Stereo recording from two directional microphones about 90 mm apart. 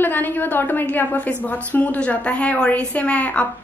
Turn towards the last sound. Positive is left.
turn(degrees=15)  # may be behind; listen again after turning